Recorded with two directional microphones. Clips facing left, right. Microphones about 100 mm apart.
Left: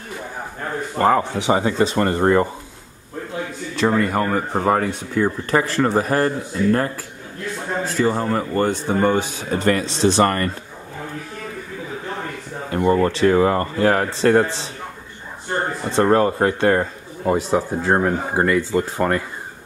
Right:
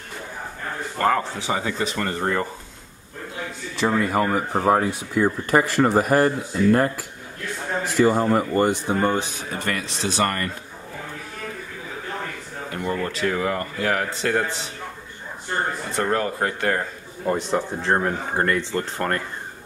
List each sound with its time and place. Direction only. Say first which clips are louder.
0.9 s a man's voice: left 4 dB; 20° left (ahead or behind)
1.6 s speech: left 7 dB; 30° left (ahead or behind)
3.7 s speech: left 2 dB; centre (ahead or behind)
9.7 s a man's voice: left 10 dB; 30° left (ahead or behind)
12.7 s speech: left 9 dB; 35° left (ahead or behind)
15.9 s a man's voice: left 10 dB; 30° left (ahead or behind)
17.3 s speech: left 4 dB; 5° left (ahead or behind)